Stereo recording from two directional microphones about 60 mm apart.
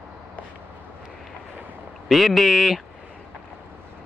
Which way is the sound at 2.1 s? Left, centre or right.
Centre.